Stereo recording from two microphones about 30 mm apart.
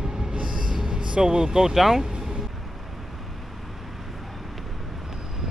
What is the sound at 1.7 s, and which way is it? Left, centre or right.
Speech, centre.